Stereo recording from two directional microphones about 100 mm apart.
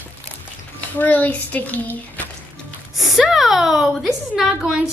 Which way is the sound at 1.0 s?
15° left (ahead or behind).